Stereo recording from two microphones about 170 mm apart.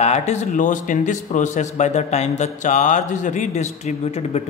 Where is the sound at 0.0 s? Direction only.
40° left (ahead or behind).